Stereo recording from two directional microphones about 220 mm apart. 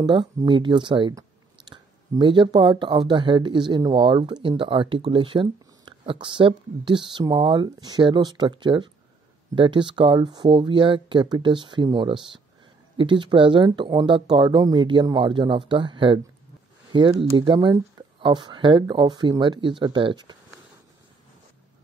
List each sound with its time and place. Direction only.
0.0 s speech: 20° right (ahead or behind)